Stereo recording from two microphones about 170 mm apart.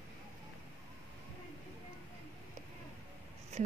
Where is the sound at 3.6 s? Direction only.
40° right (ahead or behind).